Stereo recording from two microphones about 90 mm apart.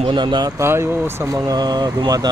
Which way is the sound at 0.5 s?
30° right (ahead or behind).